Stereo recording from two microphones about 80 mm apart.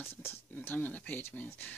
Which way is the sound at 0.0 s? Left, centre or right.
Left.